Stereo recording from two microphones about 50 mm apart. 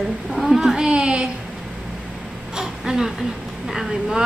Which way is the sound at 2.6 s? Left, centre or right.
Centre.